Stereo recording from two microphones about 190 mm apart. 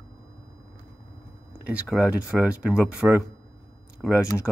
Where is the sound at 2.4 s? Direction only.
5° right (ahead or behind).